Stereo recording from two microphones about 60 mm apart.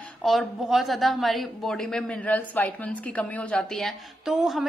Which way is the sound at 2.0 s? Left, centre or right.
Left.